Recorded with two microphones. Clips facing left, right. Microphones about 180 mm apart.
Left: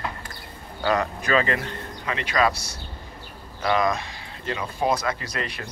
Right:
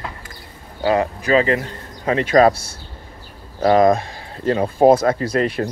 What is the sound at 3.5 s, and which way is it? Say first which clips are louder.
Speech: right 9 dB; 40° right (ahead or behind).